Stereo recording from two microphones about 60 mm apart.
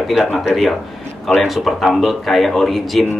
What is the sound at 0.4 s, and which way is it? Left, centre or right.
Speech, centre.